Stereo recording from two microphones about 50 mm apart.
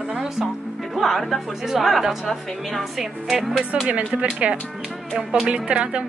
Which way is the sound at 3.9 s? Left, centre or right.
Right.